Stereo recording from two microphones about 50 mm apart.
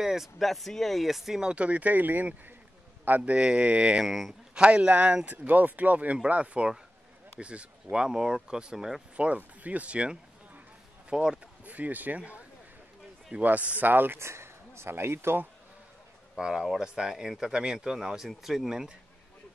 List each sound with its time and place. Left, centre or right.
0.0 s speech: centre
1.4 s speech: right
4.0 s speech: centre
4.6 s speech: right
9.1 s speech: right
11.6 s speech: right
14.1 s speech: right
16.3 s speech: centre